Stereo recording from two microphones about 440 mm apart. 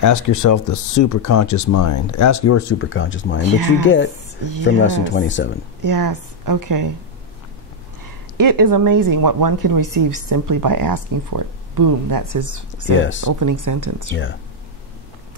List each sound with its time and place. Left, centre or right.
0.0 s speech: left
5.9 s speech: right
8.4 s speech: right
12.9 s speech: left
13.3 s speech: right